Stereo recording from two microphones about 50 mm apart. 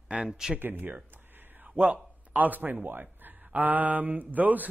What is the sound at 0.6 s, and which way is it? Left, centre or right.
A man's voice, right.